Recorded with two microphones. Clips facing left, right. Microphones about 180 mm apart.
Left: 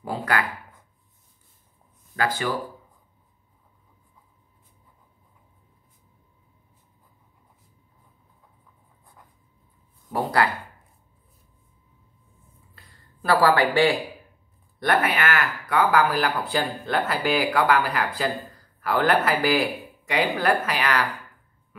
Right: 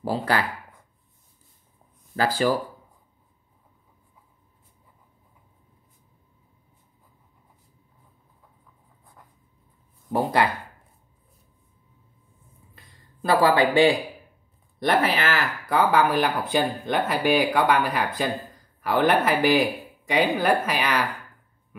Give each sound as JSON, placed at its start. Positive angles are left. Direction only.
{"t": 0.0, "sound": "speech", "side_deg": -30}
{"t": 2.1, "sound": "speech", "side_deg": -35}
{"t": 10.1, "sound": "a sound", "side_deg": -20}
{"t": 12.9, "sound": "speech", "side_deg": -20}